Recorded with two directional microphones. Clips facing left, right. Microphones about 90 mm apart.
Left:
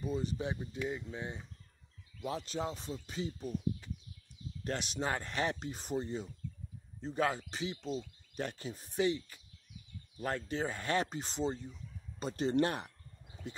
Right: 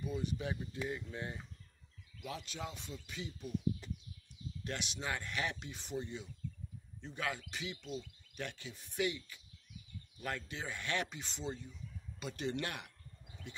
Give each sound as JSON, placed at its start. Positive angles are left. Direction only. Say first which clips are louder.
{"t": 0.0, "sound": "speech", "louder": "left 3 dB", "side_deg": 35}
{"t": 0.8, "sound": "speech", "louder": "left 3 dB", "side_deg": 15}
{"t": 2.1, "sound": "speech", "louder": "left 7 dB", "side_deg": 35}
{"t": 4.6, "sound": "speech", "louder": "left 5 dB", "side_deg": 40}